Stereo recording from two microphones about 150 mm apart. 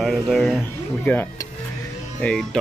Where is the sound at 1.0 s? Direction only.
15° left (ahead or behind).